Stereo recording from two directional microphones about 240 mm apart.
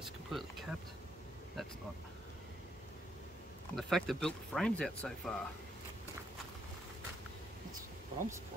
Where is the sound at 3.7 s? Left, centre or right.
Centre.